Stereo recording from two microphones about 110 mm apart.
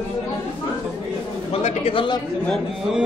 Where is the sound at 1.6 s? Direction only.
55° left (ahead or behind).